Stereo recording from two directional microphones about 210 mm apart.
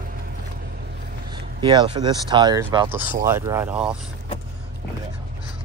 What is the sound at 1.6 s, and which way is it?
Speech, 20° right (ahead or behind).